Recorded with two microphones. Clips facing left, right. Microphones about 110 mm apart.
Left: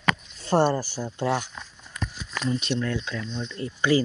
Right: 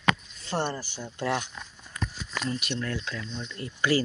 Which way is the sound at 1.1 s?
30° left (ahead or behind).